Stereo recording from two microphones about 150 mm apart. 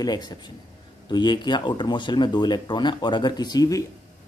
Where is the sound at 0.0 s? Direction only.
25° left (ahead or behind).